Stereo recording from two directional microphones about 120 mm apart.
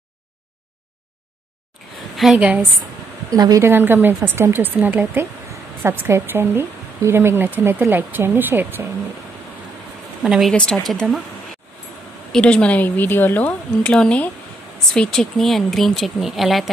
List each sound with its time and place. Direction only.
2.3 s a woman's voice: 10° right (ahead or behind)
3.3 s a woman's voice: 30° right (ahead or behind)
3.6 s a woman's voice: 20° right (ahead or behind)
10.2 s speech: 5° right (ahead or behind)
10.5 s speech: 10° left (ahead or behind)
12.3 s speech: 10° left (ahead or behind)